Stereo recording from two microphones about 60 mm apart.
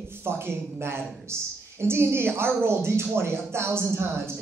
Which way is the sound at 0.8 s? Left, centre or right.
Right.